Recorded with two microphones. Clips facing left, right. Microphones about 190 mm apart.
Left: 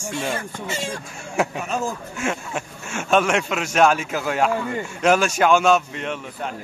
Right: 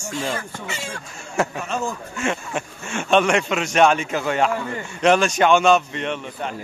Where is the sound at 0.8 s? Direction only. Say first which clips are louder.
Left 3 dB; 10° left (ahead or behind).